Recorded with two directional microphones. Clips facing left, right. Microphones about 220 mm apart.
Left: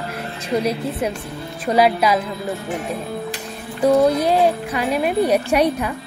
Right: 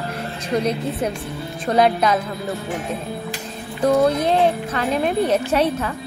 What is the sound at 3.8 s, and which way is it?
Music, 10° left (ahead or behind).